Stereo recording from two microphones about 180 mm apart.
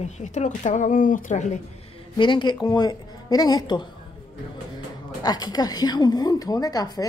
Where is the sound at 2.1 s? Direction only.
25° left (ahead or behind).